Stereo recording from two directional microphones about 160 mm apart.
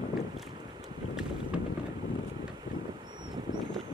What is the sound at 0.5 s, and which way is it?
Boat, 30° right (ahead or behind).